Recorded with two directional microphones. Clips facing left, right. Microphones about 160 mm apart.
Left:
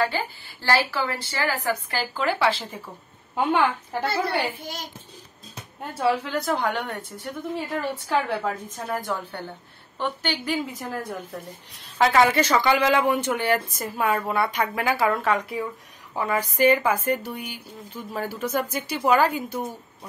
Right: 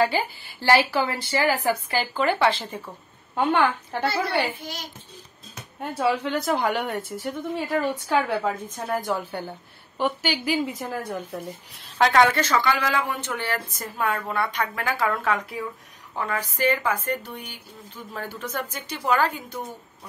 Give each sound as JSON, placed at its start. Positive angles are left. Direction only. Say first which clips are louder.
{"t": 0.0, "sound": "a woman's voice", "louder": "right 3 dB", "side_deg": -15}
{"t": 1.9, "sound": "a woman's voice", "louder": "right 2 dB", "side_deg": 0}
{"t": 5.9, "sound": "a woman's voice", "louder": "even", "side_deg": 0}
{"t": 12.4, "sound": "speech", "louder": "left 3 dB", "side_deg": 15}